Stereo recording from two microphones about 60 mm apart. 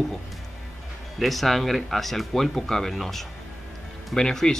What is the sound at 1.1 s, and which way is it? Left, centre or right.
Speech, centre.